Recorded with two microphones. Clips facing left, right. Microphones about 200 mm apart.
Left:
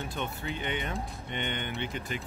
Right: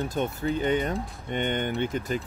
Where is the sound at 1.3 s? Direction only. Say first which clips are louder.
Right 8 dB; 45° right (ahead or behind).